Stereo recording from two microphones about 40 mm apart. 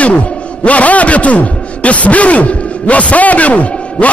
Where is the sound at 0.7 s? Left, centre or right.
Left.